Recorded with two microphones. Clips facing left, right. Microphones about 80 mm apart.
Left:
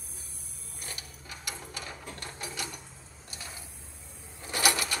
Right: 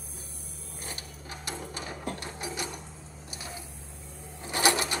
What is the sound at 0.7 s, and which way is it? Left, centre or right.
Mechanisms, right.